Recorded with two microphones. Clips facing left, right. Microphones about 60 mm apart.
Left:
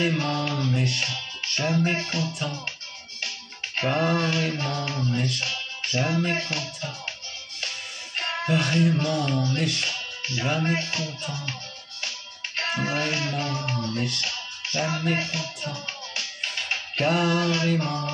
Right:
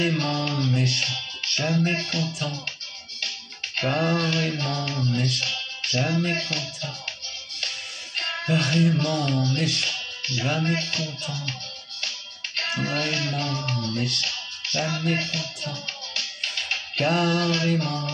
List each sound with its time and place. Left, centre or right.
0.0 s music: centre
1.1 s music: centre
3.7 s music: centre
8.5 s music: centre
9.6 s speech: centre
10.6 s music: centre
12.6 s music: centre